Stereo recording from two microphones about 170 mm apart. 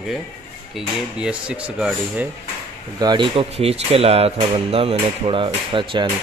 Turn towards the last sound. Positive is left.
turn(degrees=-30)  # may be behind; listen again after turning